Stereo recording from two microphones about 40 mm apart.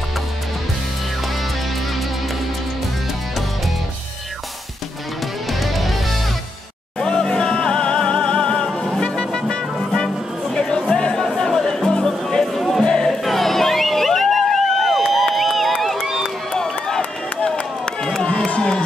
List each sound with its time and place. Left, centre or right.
5.5 s music: centre
7.0 s music: centre
12.5 s a sound: centre
12.8 s music: centre
13.2 s vehicle: centre
15.1 s music: centre
16.0 s run: centre